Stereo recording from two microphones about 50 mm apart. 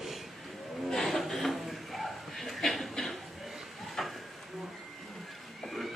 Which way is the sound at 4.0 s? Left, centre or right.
Centre.